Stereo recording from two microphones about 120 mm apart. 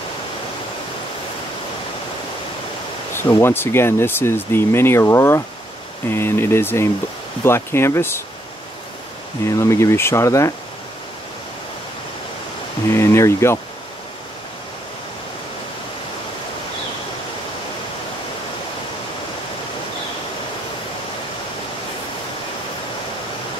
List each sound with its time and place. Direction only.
3.2 s speech: 25° left (ahead or behind)
9.6 s speech: 25° left (ahead or behind)
12.9 s speech: 25° left (ahead or behind)